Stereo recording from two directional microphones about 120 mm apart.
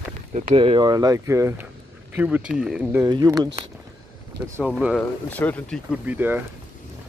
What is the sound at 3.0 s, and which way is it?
Speech, 35° right (ahead or behind).